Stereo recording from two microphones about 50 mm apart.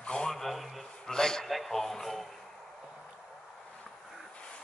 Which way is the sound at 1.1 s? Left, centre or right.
Centre.